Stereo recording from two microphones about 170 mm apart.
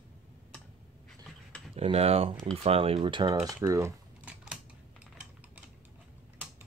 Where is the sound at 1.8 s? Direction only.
35° right (ahead or behind).